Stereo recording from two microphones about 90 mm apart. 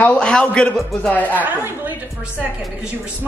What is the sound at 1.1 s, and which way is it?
Speech, 20° left (ahead or behind).